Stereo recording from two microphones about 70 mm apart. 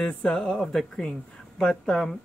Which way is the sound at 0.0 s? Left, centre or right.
Centre.